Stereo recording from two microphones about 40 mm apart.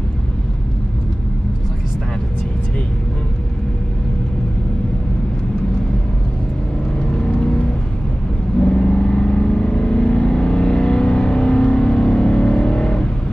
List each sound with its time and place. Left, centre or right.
7.1 s vehicle: left